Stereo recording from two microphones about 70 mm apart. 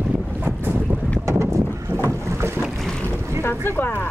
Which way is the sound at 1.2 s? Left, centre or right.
Right.